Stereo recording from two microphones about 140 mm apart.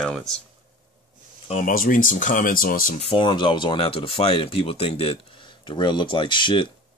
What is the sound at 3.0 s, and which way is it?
Speech, 35° left (ahead or behind).